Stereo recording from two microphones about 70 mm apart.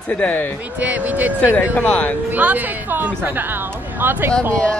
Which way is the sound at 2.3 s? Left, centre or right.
Right.